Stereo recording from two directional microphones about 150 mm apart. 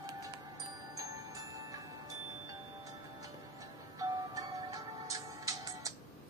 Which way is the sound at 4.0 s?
25° right (ahead or behind).